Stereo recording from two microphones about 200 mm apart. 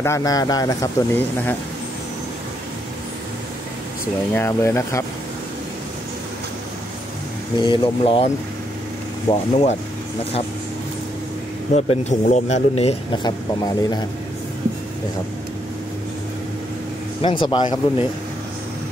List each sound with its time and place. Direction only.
0.0 s speech: 15° left (ahead or behind)
4.4 s speech: 15° left (ahead or behind)
7.5 s speech: 20° left (ahead or behind)
9.3 s speech: 30° left (ahead or behind)
11.7 s speech: 35° left (ahead or behind)
17.2 s speech: 25° left (ahead or behind)